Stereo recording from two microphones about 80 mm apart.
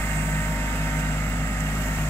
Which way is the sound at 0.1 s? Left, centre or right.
Left.